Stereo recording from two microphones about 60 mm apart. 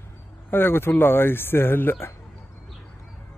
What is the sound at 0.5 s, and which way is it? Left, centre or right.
Speech, left.